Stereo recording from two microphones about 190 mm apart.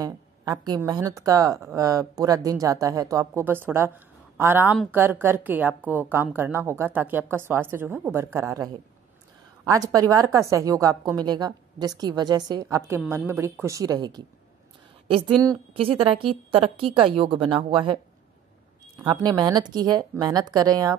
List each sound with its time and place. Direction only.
0.0 s speech: 20° right (ahead or behind)
9.7 s a woman's voice: 20° right (ahead or behind)
19.0 s a woman's voice: 20° right (ahead or behind)